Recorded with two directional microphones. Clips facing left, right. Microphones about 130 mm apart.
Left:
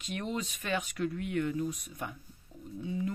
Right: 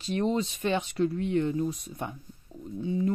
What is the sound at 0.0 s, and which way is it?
Speech, 30° right (ahead or behind).